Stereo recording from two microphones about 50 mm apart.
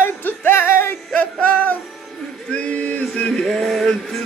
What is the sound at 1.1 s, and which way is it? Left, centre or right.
Music, left.